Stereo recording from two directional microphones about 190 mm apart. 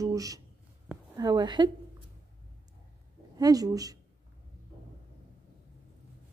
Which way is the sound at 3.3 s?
20° right (ahead or behind).